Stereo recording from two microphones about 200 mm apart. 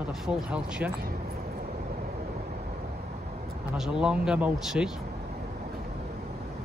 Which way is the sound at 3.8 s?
5° right (ahead or behind).